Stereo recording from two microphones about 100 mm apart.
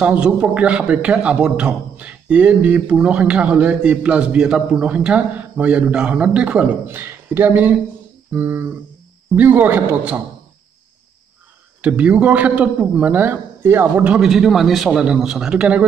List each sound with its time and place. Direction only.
0.0 s a man's voice: 10° right (ahead or behind)
11.8 s a man's voice: 10° right (ahead or behind)
14.0 s a man's voice: 5° right (ahead or behind)